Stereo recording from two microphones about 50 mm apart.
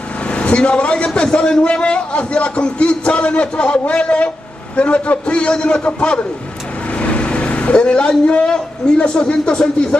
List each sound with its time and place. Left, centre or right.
0.3 s a man's voice: left
7.0 s vehicle: left
8.3 s a man's voice: left